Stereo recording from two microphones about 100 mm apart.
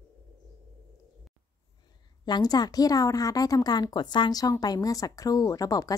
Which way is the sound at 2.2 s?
45° left (ahead or behind).